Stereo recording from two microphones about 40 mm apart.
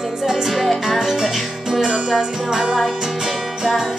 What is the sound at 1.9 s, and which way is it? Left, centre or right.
Music, centre.